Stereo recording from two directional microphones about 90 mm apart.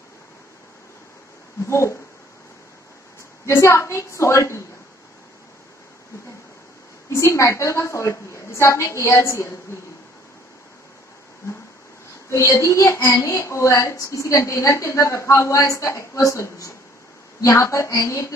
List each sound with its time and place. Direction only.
1.7 s a woman's voice: 30° left (ahead or behind)
3.4 s a woman's voice: 30° left (ahead or behind)
7.1 s a woman's voice: 30° left (ahead or behind)
12.3 s a woman's voice: 35° left (ahead or behind)